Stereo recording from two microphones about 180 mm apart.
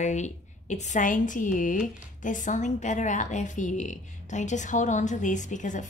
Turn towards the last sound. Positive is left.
turn(degrees=45)  # may be behind; listen again after turning